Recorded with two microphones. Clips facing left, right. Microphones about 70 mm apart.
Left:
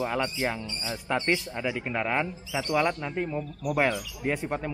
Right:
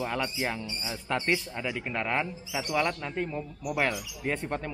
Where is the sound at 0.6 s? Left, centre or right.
Centre.